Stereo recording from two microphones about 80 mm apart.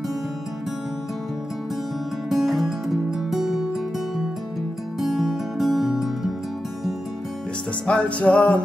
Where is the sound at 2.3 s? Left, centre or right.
Centre.